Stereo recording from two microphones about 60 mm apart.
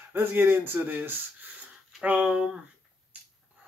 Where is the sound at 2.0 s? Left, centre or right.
Right.